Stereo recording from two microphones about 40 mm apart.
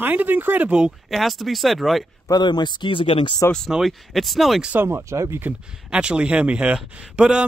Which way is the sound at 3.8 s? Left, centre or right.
Centre.